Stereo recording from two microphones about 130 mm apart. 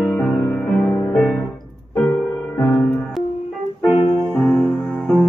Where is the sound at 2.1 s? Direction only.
20° left (ahead or behind).